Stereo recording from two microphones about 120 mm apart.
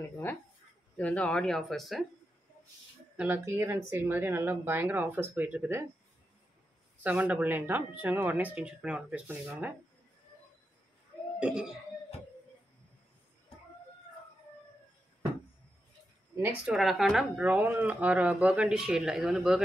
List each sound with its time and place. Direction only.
0.9 s speech: 10° left (ahead or behind)
3.2 s speech: 15° right (ahead or behind)
7.0 s speech: 10° right (ahead or behind)
11.3 s speech: 10° right (ahead or behind)
16.6 s speech: centre (ahead or behind)
17.4 s speech: 15° right (ahead or behind)